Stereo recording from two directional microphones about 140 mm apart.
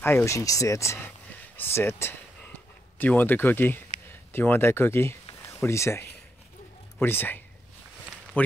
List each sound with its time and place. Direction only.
0.0 s speech: 20° left (ahead or behind)